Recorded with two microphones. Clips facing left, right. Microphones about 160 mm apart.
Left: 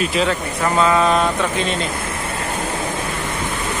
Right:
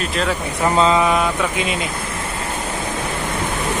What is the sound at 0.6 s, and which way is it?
Speech, 15° right (ahead or behind).